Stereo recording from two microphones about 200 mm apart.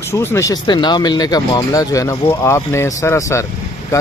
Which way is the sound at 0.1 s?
15° left (ahead or behind).